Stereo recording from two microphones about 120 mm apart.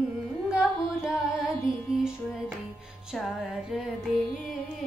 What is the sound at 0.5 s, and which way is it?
Carnatic music, 5° right (ahead or behind).